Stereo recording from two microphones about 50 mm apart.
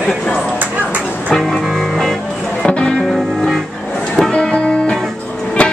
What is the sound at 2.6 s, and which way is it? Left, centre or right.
Music, centre.